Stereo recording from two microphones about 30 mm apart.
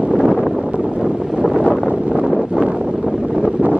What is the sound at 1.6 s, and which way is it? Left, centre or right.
Wind noise, right.